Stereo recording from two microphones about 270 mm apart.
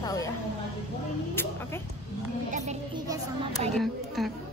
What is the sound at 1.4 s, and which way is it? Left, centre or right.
Speech, centre.